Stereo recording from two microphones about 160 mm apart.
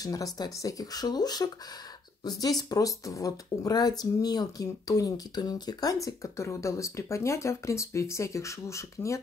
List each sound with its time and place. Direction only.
0.0 s speech: 20° left (ahead or behind)
2.7 s speech: 20° left (ahead or behind)